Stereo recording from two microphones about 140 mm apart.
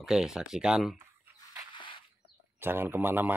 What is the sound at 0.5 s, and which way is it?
Mantra, 5° right (ahead or behind).